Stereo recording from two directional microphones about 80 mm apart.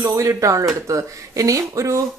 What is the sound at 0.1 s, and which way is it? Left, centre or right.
A woman's voice, right.